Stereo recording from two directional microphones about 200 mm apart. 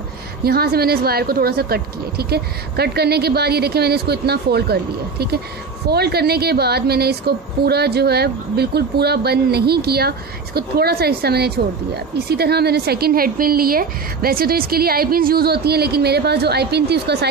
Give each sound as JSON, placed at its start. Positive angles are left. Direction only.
{"t": 0.4, "sound": "a woman's voice", "side_deg": -50}
{"t": 5.9, "sound": "a woman's voice", "side_deg": -55}